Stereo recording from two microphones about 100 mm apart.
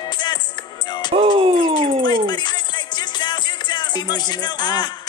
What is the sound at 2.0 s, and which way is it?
Music, 45° left (ahead or behind).